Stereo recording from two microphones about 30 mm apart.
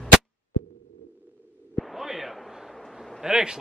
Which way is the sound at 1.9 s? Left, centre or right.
Centre.